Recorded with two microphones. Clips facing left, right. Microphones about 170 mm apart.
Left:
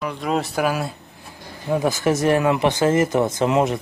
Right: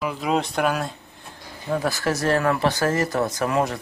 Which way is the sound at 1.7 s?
20° left (ahead or behind).